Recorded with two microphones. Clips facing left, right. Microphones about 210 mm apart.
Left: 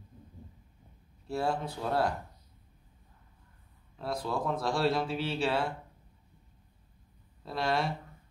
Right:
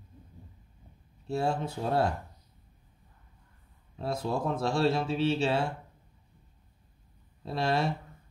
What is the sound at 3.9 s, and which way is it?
A man's voice, 25° right (ahead or behind).